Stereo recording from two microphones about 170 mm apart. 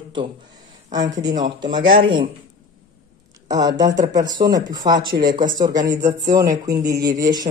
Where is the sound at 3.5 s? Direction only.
20° right (ahead or behind).